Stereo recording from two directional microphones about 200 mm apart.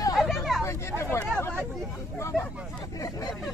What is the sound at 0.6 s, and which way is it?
Vehicle, 15° left (ahead or behind).